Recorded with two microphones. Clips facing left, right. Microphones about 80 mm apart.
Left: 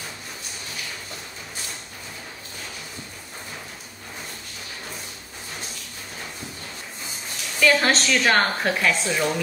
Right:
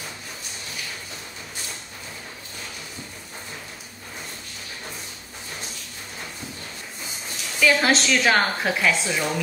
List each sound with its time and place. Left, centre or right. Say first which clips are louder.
7.6 s a woman's voice: even; centre